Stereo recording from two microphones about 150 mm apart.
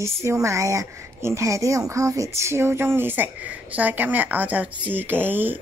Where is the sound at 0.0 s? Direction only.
20° right (ahead or behind).